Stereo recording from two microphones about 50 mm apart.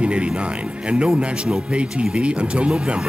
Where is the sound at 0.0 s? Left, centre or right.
Right.